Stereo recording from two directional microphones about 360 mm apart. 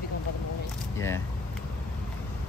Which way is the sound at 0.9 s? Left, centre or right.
Centre.